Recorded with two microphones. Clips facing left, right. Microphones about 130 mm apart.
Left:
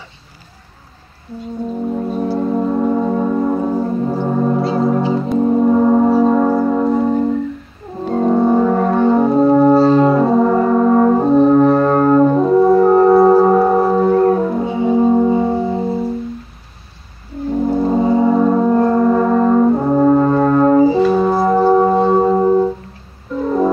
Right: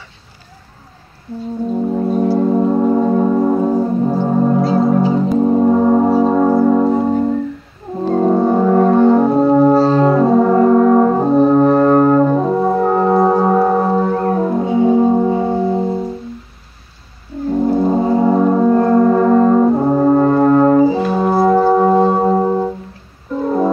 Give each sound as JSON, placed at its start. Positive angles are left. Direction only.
{"t": 1.9, "sound": "music", "side_deg": -10}
{"t": 8.1, "sound": "brass instrument", "side_deg": -10}
{"t": 10.2, "sound": "brass instrument", "side_deg": -10}
{"t": 12.1, "sound": "brass instrument", "side_deg": -10}
{"t": 13.2, "sound": "singing bowl", "side_deg": 5}
{"t": 13.5, "sound": "music", "side_deg": 0}
{"t": 14.0, "sound": "church bell", "side_deg": -10}
{"t": 14.6, "sound": "music", "side_deg": 0}
{"t": 17.6, "sound": "music", "side_deg": -5}
{"t": 18.3, "sound": "music", "side_deg": -10}
{"t": 18.6, "sound": "music", "side_deg": 0}
{"t": 19.5, "sound": "brass instrument", "side_deg": -10}